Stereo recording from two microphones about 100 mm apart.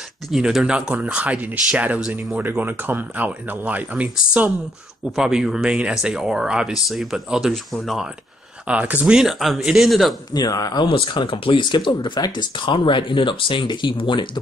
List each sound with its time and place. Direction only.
0.3 s speech: 5° right (ahead or behind)
8.6 s speech: 15° right (ahead or behind)
10.3 s speech: 40° left (ahead or behind)
10.9 s speech: 60° left (ahead or behind)